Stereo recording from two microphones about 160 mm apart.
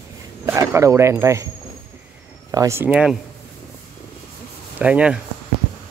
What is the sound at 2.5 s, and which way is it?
Speech, 20° right (ahead or behind).